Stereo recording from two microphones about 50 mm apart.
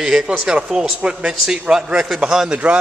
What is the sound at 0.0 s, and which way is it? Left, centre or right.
Speech, centre.